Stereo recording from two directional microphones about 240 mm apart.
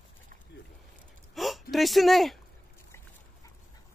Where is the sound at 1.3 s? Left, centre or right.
Centre.